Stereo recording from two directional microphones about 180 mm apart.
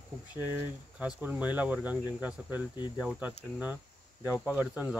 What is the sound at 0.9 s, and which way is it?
Speech, 5° right (ahead or behind).